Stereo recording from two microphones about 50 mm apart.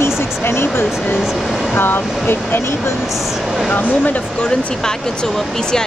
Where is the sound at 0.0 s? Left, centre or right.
Left.